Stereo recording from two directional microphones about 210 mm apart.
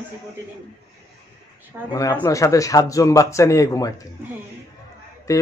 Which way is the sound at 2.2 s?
15° left (ahead or behind).